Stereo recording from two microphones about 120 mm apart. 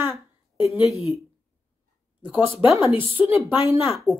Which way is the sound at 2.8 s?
20° right (ahead or behind).